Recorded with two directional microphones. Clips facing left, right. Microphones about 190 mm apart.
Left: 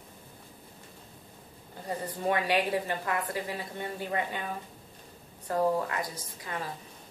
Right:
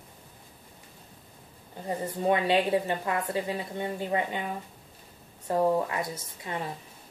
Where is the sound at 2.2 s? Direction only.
20° right (ahead or behind).